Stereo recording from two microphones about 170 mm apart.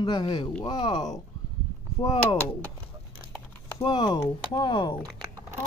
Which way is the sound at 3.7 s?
25° left (ahead or behind).